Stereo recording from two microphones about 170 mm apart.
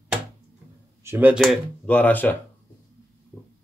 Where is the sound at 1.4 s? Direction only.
5° left (ahead or behind).